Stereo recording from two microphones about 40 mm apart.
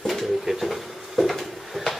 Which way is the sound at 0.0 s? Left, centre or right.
Centre.